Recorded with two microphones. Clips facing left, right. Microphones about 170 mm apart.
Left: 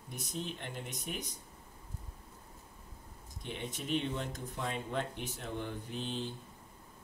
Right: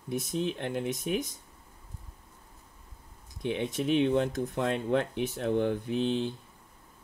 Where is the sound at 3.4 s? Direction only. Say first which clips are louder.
Right 12 dB; 70° right (ahead or behind).